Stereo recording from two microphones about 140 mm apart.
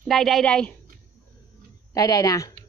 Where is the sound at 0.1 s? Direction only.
Centre (ahead or behind).